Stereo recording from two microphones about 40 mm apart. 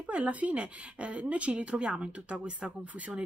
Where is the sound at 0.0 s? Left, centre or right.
Right.